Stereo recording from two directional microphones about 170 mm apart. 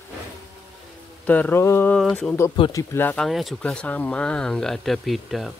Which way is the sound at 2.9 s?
10° left (ahead or behind).